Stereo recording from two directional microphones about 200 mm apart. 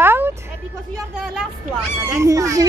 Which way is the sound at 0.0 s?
10° right (ahead or behind).